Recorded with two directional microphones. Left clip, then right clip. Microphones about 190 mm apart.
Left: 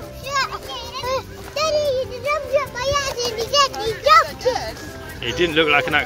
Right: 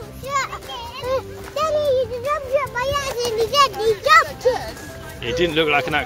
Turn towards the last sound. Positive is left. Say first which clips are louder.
# left 2 dB
turn(degrees=-15)  # may be behind; listen again after turning